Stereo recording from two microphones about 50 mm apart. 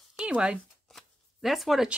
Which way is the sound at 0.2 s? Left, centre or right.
Centre.